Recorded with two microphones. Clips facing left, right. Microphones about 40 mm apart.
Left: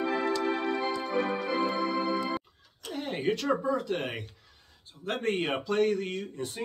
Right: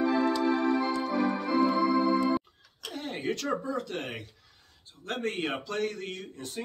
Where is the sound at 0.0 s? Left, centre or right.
Left.